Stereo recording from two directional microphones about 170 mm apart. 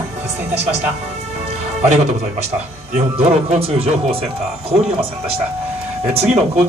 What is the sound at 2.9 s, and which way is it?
A man's voice, 40° right (ahead or behind).